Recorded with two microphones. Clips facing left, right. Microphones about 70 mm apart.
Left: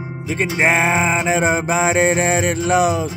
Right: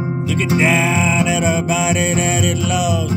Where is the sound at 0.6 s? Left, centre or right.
Left.